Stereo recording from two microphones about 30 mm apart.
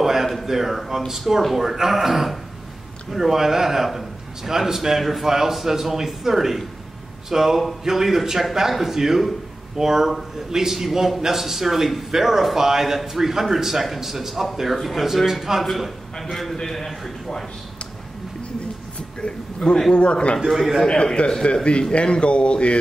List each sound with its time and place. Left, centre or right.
0.0 s a sound: centre
0.5 s a man's voice: centre
19.9 s speech: left
20.3 s a man's voice: centre
20.8 s speech: left